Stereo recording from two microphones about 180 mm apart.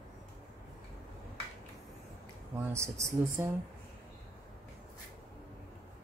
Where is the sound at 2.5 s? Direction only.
15° right (ahead or behind).